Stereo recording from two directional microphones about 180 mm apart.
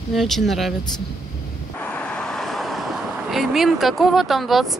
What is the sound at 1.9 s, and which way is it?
Vehicle, 5° left (ahead or behind).